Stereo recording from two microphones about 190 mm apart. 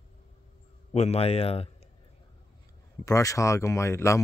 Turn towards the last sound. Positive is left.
turn(degrees=15)  # may be behind; listen again after turning